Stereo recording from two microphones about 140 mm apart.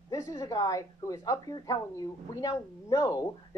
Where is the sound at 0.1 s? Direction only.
25° left (ahead or behind).